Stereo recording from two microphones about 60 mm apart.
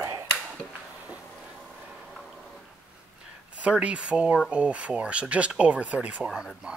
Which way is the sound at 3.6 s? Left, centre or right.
Right.